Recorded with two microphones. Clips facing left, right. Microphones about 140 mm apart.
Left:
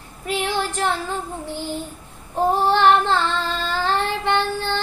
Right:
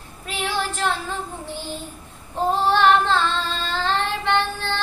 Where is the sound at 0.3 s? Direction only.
15° left (ahead or behind).